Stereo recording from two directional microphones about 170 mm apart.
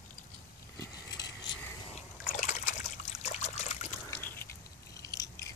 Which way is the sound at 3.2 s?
40° left (ahead or behind).